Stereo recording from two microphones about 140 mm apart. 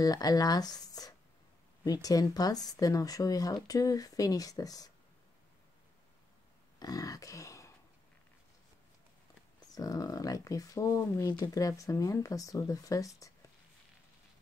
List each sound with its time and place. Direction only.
0.0 s speech: 30° left (ahead or behind)
6.8 s a sound: 25° left (ahead or behind)
9.7 s speech: 25° left (ahead or behind)